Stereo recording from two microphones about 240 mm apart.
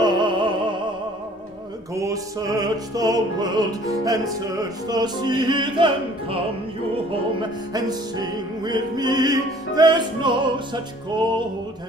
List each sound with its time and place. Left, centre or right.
0.0 s music: centre
2.0 s music: centre